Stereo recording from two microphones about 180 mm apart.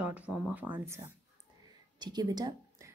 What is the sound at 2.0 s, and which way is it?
Speech, 20° right (ahead or behind).